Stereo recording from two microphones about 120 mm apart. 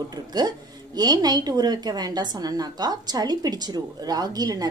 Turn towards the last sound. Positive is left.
turn(degrees=-30)  # may be behind; listen again after turning